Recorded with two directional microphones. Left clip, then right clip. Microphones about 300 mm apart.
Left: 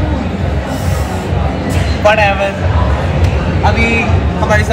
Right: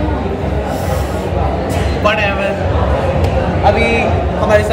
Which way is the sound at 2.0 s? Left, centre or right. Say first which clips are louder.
Left 5 dB; centre.